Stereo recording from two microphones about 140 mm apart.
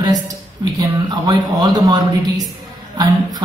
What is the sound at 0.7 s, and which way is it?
Speech, 25° right (ahead or behind).